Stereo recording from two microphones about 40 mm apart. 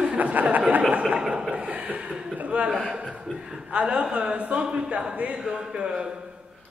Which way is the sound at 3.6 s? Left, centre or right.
Right.